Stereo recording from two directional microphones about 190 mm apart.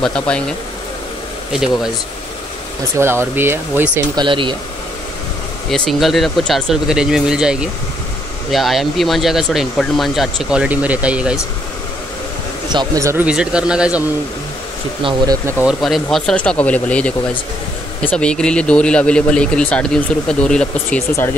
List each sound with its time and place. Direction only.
0.0 s speech: 5° left (ahead or behind)
1.5 s speech: 5° right (ahead or behind)
3.0 s speech: 10° right (ahead or behind)
4.1 s speech: 25° right (ahead or behind)
5.7 s speech: centre (ahead or behind)
12.7 s speech: 15° right (ahead or behind)
15.0 s speech: 20° right (ahead or behind)
15.6 s speech: centre (ahead or behind)